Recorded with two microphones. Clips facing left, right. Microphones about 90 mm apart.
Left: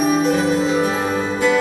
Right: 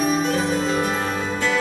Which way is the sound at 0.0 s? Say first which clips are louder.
Left 4 dB; 5° left (ahead or behind).